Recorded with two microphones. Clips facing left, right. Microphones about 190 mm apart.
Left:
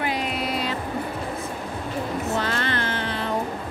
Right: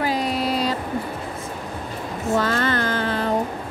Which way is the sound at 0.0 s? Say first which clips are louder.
Right 4 dB; 35° right (ahead or behind).